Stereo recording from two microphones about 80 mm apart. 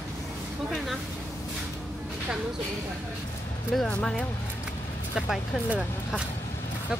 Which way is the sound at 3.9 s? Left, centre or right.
Centre.